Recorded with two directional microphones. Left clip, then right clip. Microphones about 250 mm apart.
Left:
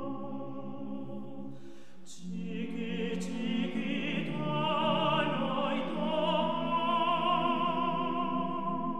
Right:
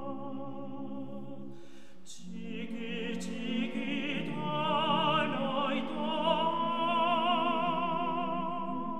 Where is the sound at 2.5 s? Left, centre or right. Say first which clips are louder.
Left 1 dB; right.